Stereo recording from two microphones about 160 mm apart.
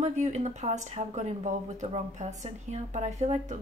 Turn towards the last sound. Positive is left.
turn(degrees=-45)  # may be behind; listen again after turning